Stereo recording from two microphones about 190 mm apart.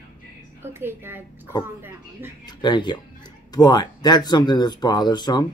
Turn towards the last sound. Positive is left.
turn(degrees=20)  # may be behind; listen again after turning